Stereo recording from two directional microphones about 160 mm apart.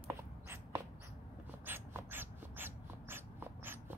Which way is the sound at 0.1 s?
15° right (ahead or behind).